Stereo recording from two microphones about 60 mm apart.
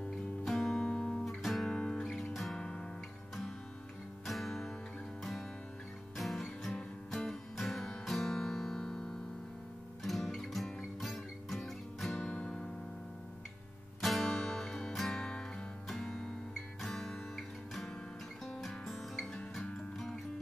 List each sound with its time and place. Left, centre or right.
0.1 s music: centre
0.8 s guitar: centre
1.2 s music: centre
1.7 s music: centre
4.3 s music: centre
6.1 s music: centre
12.4 s music: centre
14.0 s music: centre
18.4 s music: centre